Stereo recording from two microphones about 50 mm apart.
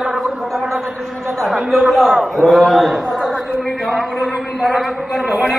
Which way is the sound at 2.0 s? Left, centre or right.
Centre.